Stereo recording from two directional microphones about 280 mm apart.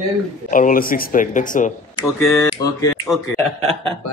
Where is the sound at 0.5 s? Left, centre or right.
Left.